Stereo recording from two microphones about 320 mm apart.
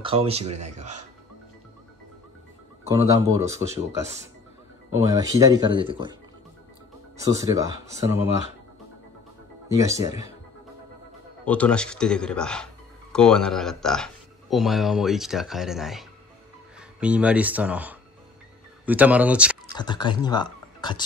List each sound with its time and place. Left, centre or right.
0.0 s speech: centre
2.8 s speech: centre
5.0 s speech: centre
7.2 s speech: centre
9.7 s speech: centre
11.4 s speech: centre
19.8 s speech: centre